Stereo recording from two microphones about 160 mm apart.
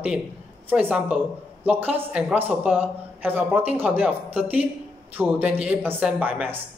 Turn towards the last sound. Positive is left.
turn(degrees=-10)  # may be behind; listen again after turning